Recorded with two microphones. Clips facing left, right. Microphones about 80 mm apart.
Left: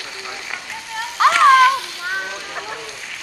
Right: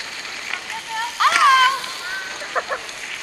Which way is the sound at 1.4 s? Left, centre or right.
Left.